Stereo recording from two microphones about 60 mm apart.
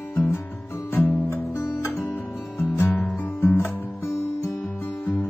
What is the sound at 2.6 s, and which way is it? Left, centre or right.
Music, left.